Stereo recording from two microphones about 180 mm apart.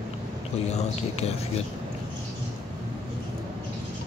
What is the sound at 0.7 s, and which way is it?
Speech, 35° left (ahead or behind).